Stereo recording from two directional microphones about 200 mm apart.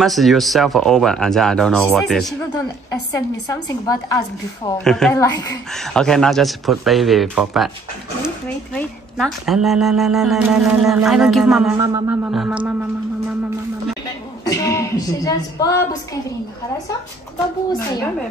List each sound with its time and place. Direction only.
0.0 s speech: centre (ahead or behind)
2.9 s speech: 20° left (ahead or behind)
4.8 s speech: centre (ahead or behind)
14.4 s speech: 15° left (ahead or behind)